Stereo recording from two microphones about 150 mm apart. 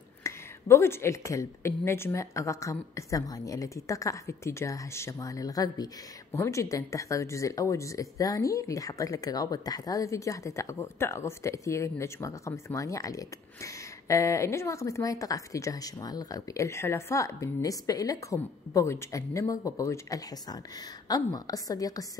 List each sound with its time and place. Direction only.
0.2 s speech: 20° left (ahead or behind)